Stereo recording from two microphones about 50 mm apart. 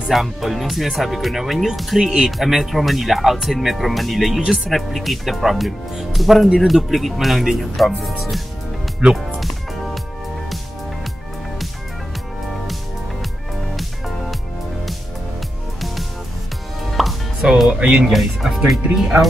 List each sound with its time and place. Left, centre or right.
0.1 s speech: centre
9.0 s speech: right
13.7 s music: centre
17.0 s music: centre
17.6 s speech: right
18.1 s speech: centre